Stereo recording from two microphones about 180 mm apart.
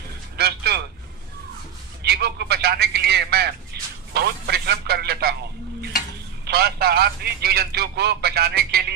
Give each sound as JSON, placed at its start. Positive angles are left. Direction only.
{"t": 0.4, "sound": "a sound", "side_deg": -60}
{"t": 2.0, "sound": "a man's voice", "side_deg": -65}
{"t": 6.4, "sound": "a man's voice", "side_deg": -60}